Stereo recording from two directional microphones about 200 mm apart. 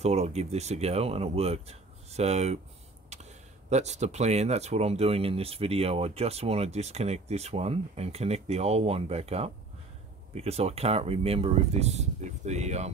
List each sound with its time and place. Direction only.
0.0 s speech: 35° right (ahead or behind)